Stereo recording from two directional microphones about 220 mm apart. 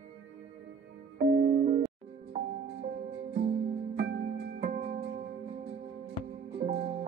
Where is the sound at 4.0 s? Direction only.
45° right (ahead or behind).